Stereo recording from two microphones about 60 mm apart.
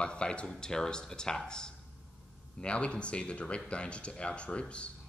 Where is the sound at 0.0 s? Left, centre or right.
Centre.